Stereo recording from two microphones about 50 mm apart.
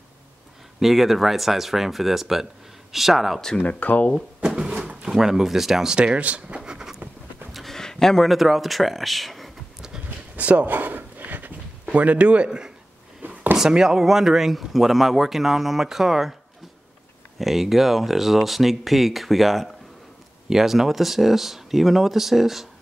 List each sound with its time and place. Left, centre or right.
0.7 s speech: centre
3.5 s speech: left
4.4 s drawer open or close: centre
5.1 s speech: centre
5.9 s speech: right
7.5 s a sound: centre
8.3 s speech: centre
10.0 s a sound: right
13.2 s a sound: right
13.6 s speech: centre
17.4 s speech: centre